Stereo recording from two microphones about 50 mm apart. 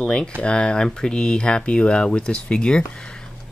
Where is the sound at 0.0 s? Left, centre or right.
Centre.